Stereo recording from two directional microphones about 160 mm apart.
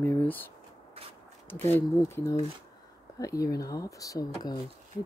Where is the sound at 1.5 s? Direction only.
15° left (ahead or behind).